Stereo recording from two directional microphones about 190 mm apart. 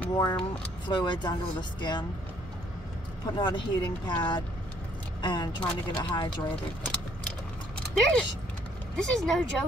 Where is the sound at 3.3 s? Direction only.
25° left (ahead or behind).